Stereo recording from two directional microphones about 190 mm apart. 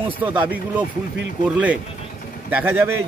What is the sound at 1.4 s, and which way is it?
Speech, 5° right (ahead or behind).